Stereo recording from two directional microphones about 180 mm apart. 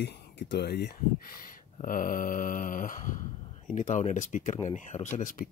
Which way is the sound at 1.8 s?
50° left (ahead or behind).